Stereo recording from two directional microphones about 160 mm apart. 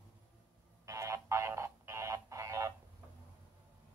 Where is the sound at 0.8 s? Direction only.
20° right (ahead or behind).